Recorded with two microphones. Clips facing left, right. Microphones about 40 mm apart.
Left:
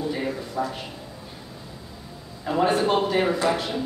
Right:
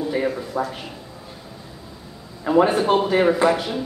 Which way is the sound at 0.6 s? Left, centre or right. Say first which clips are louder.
Right 2 dB; right.